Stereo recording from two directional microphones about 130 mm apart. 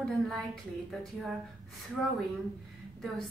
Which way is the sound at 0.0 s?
Centre (ahead or behind).